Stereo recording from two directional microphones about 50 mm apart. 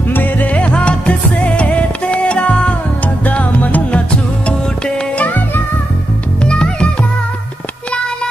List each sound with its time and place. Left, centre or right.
0.1 s music: left
4.1 s music: centre
5.1 s music: left
6.4 s music: centre